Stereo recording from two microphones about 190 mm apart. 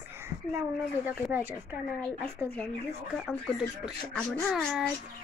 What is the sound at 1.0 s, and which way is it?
Speech, 10° right (ahead or behind).